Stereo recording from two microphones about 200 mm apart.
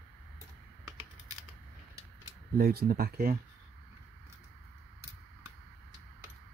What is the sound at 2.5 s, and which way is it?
Speech, 50° right (ahead or behind).